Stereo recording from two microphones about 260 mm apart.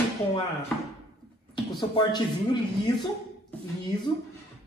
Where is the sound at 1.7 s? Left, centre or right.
Centre.